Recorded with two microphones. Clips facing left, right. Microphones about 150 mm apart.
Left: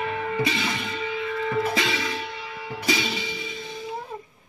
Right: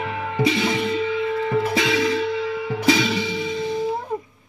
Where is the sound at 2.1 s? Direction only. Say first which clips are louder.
Right 11 dB; 70° right (ahead or behind).